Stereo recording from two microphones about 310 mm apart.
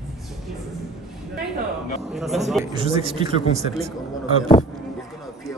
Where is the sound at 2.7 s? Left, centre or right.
Centre.